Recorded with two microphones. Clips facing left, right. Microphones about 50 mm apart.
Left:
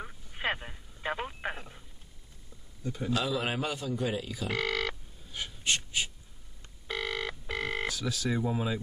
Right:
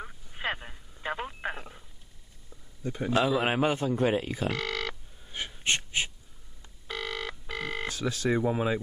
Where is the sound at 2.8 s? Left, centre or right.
Right.